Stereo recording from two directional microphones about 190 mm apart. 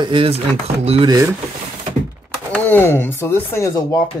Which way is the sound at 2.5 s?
10° left (ahead or behind).